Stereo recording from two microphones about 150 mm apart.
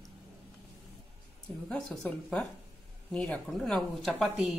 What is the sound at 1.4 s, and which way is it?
Speech, centre (ahead or behind).